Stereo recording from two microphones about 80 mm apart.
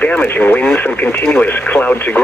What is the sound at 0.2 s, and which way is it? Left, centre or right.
Speech, left.